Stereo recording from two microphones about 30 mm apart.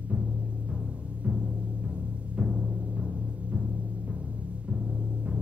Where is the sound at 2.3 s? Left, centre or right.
Right.